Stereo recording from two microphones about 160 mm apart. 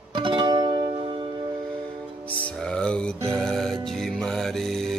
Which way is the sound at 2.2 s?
5° left (ahead or behind).